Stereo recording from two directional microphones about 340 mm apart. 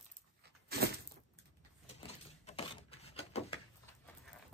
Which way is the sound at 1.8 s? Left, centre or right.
Centre.